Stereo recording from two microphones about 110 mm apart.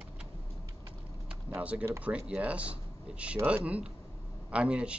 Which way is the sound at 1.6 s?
15° right (ahead or behind).